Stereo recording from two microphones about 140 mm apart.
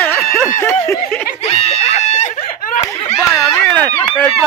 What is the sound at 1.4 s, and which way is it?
Screaming, 45° left (ahead or behind).